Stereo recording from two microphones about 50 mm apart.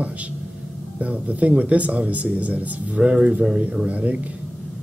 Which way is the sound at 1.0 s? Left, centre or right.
Right.